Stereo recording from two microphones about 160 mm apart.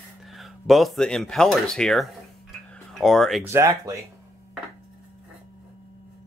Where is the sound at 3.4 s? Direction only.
15° right (ahead or behind).